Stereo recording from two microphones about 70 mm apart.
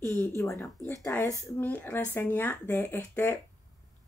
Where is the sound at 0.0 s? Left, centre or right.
Left.